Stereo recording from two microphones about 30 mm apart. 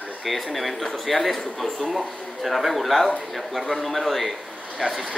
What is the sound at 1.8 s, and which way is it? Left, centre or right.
A man's voice, centre.